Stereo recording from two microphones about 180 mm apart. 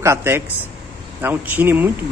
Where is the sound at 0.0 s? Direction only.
15° right (ahead or behind).